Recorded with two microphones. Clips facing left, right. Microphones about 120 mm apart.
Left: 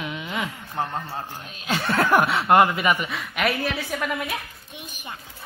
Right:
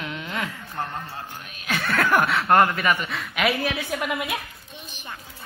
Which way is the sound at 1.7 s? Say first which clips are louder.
Left 2 dB; 25° left (ahead or behind).